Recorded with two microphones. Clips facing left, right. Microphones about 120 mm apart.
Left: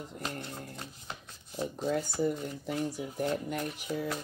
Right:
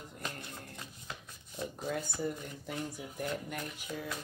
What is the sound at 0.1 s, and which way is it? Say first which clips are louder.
Speech: left 2 dB; 30° left (ahead or behind).